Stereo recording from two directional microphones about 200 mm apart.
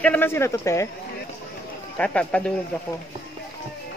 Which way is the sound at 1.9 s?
5° left (ahead or behind).